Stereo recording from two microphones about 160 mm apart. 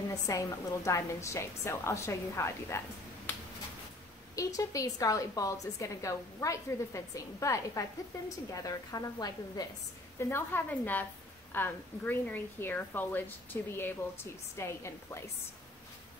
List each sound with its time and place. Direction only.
0.1 s a woman's voice: 20° left (ahead or behind)
4.4 s a woman's voice: 20° left (ahead or behind)